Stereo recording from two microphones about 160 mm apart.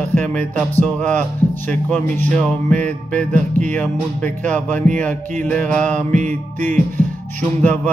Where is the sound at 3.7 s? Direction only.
10° left (ahead or behind).